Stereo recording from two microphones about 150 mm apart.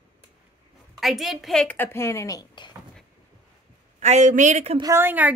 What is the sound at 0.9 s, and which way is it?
A woman's voice, centre (ahead or behind).